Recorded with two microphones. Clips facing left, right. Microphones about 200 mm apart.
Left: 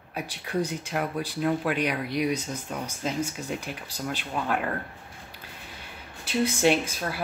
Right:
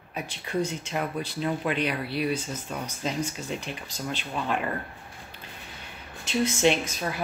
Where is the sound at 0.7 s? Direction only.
10° left (ahead or behind).